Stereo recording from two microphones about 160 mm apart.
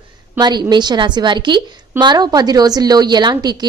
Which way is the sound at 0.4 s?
25° right (ahead or behind).